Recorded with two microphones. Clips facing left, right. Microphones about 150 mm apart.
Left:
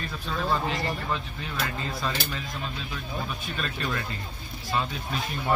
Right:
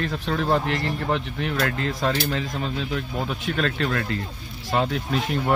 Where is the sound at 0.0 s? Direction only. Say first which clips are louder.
Right 6 dB; 85° right.